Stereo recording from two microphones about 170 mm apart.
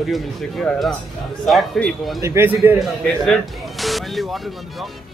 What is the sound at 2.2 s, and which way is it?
Speech, 15° right (ahead or behind).